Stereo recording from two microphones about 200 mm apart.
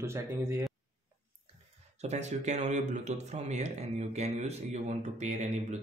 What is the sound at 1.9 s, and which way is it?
Speech, 35° right (ahead or behind).